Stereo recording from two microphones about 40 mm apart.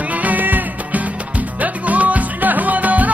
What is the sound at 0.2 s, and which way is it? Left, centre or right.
Music, right.